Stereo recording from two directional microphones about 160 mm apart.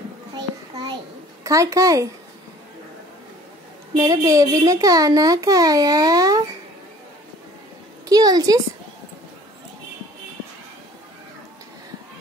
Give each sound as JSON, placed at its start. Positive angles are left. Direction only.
{"t": 1.4, "sound": "a child's voice", "side_deg": -20}
{"t": 3.9, "sound": "a child's voice", "side_deg": -20}
{"t": 8.1, "sound": "a child's voice", "side_deg": -25}